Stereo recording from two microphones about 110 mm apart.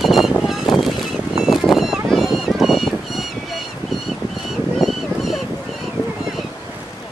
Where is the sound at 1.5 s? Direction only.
Centre (ahead or behind).